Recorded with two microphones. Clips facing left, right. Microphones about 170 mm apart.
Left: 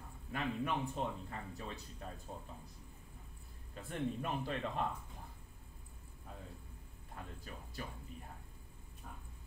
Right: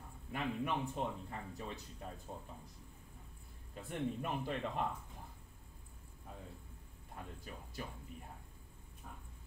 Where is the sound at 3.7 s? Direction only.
15° right (ahead or behind).